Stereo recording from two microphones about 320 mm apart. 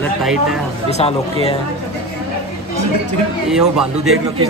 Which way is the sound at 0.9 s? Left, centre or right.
Centre.